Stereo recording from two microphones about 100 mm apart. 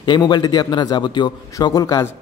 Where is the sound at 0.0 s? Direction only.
45° left (ahead or behind).